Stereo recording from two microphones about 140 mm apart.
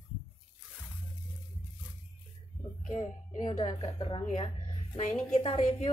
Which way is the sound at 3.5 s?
40° left (ahead or behind).